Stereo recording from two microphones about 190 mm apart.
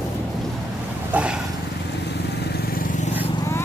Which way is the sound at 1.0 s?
5° right (ahead or behind).